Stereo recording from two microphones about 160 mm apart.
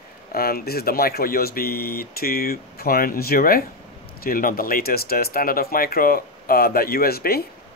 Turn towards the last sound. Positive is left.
turn(degrees=70)  # may be behind; listen again after turning